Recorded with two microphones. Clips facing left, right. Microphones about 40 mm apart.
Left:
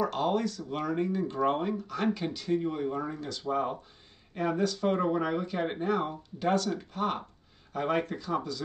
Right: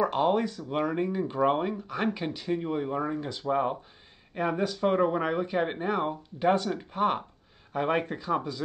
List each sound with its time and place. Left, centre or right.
0.0 s speech: right